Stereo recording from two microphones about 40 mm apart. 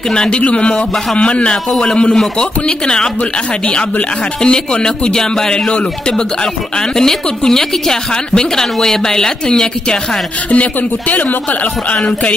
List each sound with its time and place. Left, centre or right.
0.1 s speech: left
0.4 s speech: left
4.4 s speech: left
10.5 s speech: left